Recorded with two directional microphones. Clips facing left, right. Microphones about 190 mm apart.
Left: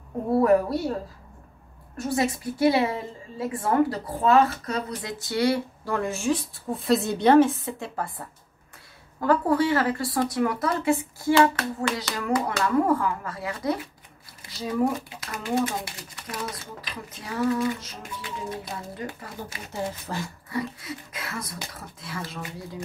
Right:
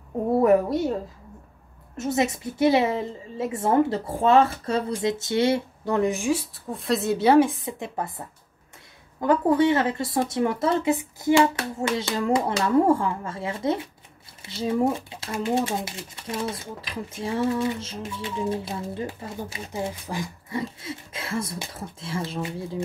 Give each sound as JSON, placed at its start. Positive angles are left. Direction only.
{"t": 0.3, "sound": "a woman's voice", "side_deg": -20}
{"t": 2.0, "sound": "a woman's voice", "side_deg": -20}
{"t": 6.5, "sound": "a woman's voice", "side_deg": 0}
{"t": 9.2, "sound": "a woman's voice", "side_deg": -20}
{"t": 20.4, "sound": "a woman's voice", "side_deg": -25}